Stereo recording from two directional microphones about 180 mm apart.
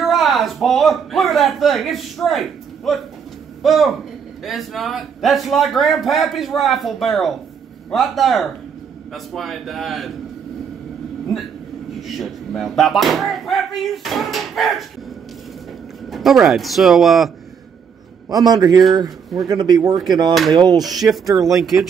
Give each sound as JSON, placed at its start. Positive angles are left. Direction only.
{"t": 0.0, "sound": "a man's voice", "side_deg": 0}
{"t": 12.0, "sound": "a man's voice", "side_deg": 0}
{"t": 16.1, "sound": "a man's voice", "side_deg": 0}
{"t": 18.3, "sound": "speech", "side_deg": -20}
{"t": 21.5, "sound": "a man's voice", "side_deg": 0}